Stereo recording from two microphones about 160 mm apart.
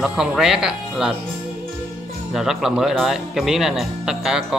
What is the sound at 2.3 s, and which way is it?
A man's voice, centre (ahead or behind).